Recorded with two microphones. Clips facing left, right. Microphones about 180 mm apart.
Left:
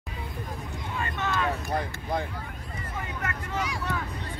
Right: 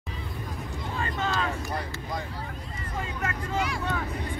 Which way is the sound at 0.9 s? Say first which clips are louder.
Right 1 dB; 25° right (ahead or behind).